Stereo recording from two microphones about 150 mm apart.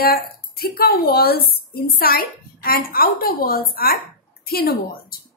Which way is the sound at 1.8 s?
80° left.